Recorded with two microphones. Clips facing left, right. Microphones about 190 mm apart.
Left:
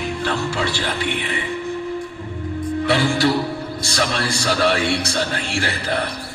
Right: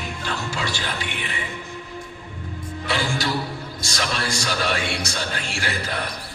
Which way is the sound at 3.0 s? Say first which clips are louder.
Left 7 dB; 55° left (ahead or behind).